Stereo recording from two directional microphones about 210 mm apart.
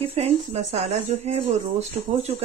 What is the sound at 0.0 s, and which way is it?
Speech, 30° right (ahead or behind).